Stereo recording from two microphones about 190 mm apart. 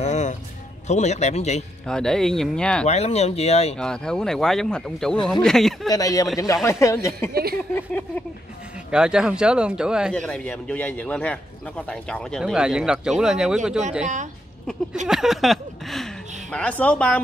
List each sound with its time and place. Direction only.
0.0 s music: 40° left (ahead or behind)
0.8 s speech: 35° left (ahead or behind)
1.9 s a man's voice: 5° left (ahead or behind)
2.9 s speech: 35° left (ahead or behind)
3.7 s a man's voice: 5° left (ahead or behind)
5.9 s a man's voice: 20° left (ahead or behind); by 13.6 s 5° right (ahead or behind)
14.0 s a woman's voice: 40° right (ahead or behind)
15.0 s speech: centre (ahead or behind)